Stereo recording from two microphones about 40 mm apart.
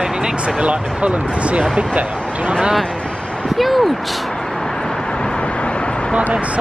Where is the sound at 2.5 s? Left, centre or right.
Right.